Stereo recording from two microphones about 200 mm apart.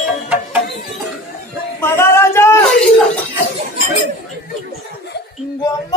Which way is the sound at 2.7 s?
5° left (ahead or behind).